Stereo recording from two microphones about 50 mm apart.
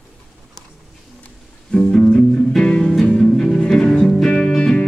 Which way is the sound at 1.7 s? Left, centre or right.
Centre.